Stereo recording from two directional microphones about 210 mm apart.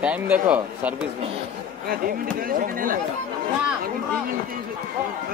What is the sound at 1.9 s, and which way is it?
Speech, 45° right (ahead or behind).